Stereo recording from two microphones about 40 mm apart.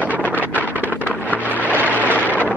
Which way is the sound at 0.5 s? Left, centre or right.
Right.